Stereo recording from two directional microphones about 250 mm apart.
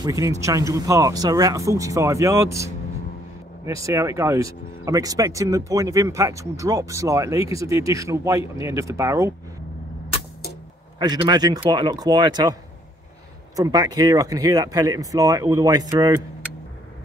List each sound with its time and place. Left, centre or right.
0.0 s speech: centre
11.0 s speech: centre
13.6 s speech: centre